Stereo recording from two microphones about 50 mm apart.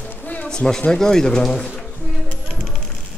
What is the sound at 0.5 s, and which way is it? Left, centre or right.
Speech, centre.